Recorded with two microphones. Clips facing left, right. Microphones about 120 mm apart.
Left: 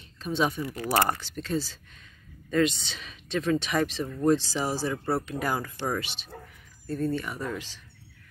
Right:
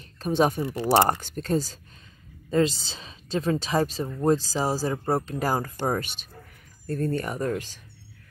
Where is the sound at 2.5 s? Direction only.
30° right (ahead or behind); by 7.7 s 45° right (ahead or behind).